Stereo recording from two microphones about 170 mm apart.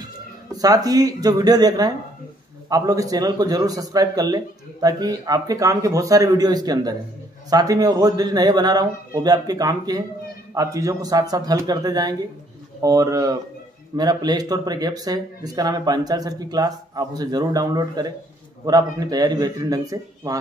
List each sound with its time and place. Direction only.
0.5 s a man's voice: 20° right (ahead or behind)